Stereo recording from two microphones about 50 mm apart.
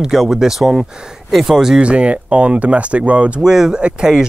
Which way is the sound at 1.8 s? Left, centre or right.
Right.